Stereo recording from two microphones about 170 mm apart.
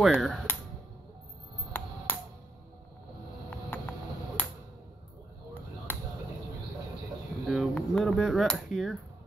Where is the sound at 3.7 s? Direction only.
10° left (ahead or behind).